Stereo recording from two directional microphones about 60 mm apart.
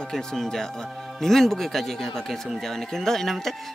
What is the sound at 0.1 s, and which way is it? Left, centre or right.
Speech, centre.